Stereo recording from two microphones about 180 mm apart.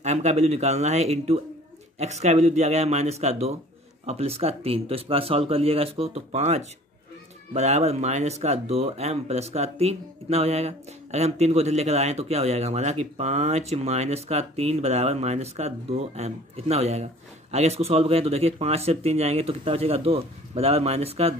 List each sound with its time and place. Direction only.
0.0 s speech: 40° right (ahead or behind)